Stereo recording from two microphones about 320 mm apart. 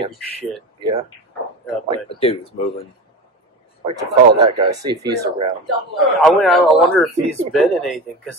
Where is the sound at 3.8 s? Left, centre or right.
Centre.